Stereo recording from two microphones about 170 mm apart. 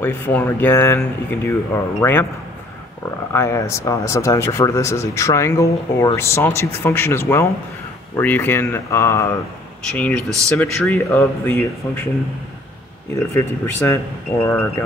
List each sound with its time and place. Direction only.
0.0 s speech: 10° left (ahead or behind)
3.3 s speech: 15° left (ahead or behind)
13.1 s speech: 15° left (ahead or behind)